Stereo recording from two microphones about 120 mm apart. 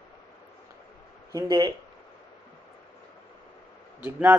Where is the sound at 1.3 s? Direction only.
30° right (ahead or behind).